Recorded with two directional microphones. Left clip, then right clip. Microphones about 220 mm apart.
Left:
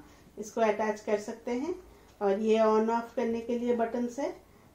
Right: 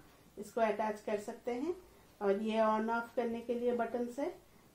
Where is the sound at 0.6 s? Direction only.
35° right (ahead or behind).